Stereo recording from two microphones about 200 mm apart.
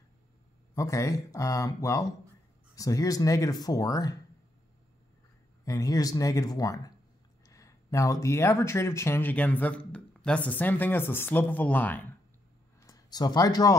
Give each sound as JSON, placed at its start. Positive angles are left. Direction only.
{"t": 0.7, "sound": "speech", "side_deg": 15}
{"t": 5.7, "sound": "speech", "side_deg": 15}